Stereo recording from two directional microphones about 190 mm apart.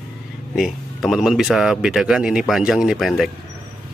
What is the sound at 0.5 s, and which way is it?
Speech, centre (ahead or behind).